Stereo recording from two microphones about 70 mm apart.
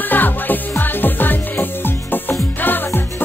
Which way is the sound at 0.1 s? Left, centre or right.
Left.